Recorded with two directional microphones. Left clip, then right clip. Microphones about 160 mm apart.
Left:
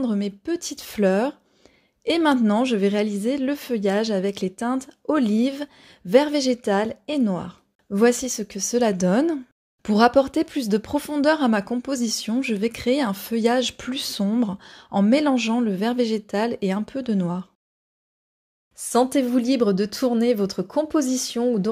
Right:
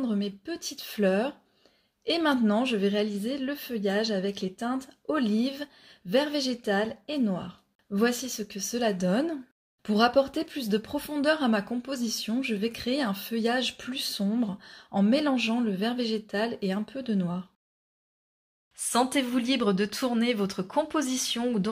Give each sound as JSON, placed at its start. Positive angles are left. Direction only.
{"t": 0.0, "sound": "speech", "side_deg": 45}
{"t": 18.8, "sound": "speech", "side_deg": 45}